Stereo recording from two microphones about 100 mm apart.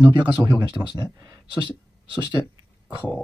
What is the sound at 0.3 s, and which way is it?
Speech, 45° right (ahead or behind).